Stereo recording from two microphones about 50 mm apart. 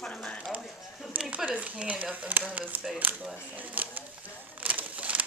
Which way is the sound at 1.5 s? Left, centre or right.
Right.